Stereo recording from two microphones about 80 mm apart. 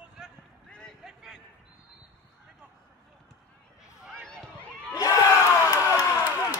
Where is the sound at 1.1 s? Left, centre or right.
Centre.